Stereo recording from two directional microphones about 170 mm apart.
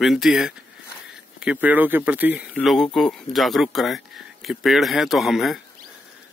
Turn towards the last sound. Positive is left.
turn(degrees=0)  # may be behind; listen again after turning